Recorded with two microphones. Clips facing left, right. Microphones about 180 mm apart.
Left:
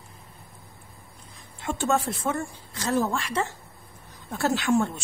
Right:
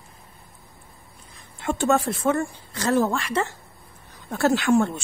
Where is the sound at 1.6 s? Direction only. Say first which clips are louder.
Right 4 dB; 65° right (ahead or behind).